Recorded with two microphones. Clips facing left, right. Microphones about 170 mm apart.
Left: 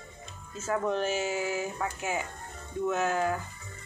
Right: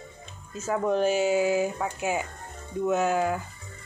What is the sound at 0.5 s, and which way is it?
Speech, 15° right (ahead or behind).